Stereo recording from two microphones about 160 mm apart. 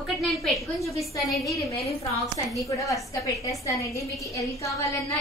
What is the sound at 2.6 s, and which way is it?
A woman's voice, 20° left (ahead or behind).